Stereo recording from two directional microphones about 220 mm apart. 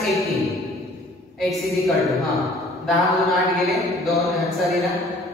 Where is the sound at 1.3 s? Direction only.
Centre (ahead or behind).